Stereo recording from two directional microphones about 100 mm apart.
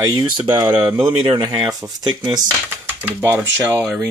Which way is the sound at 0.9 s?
55° right (ahead or behind).